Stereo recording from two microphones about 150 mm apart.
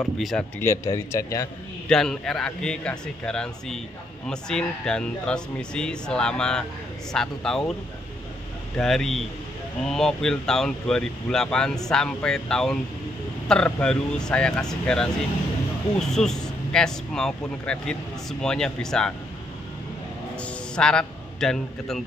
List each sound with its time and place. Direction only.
0.0 s speech: 5° left (ahead or behind)
0.6 s a man's voice: 20° left (ahead or behind)
1.9 s speech: 5° left (ahead or behind)
8.7 s speech: centre (ahead or behind)
20.3 s a man's voice: 5° left (ahead or behind)